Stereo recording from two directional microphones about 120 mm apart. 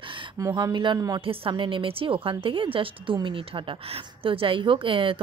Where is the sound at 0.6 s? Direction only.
40° right (ahead or behind).